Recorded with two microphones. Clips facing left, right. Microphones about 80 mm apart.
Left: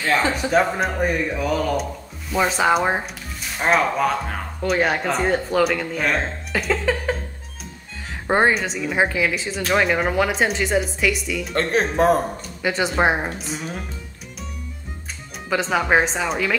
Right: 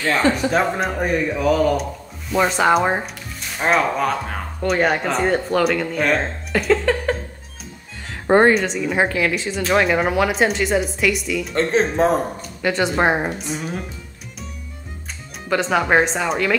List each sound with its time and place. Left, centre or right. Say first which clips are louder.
0.0 s speech: right 2 dB; centre
8.3 s speech: right 4 dB; centre
11.7 s speech: even; right
12.4 s speech: right 2 dB; centre
15.4 s speech: right 2 dB; centre